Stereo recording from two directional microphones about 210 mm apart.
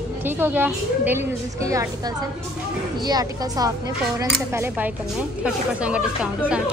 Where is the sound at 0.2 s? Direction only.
10° right (ahead or behind).